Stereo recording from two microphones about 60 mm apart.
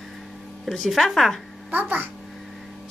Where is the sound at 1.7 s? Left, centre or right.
Right.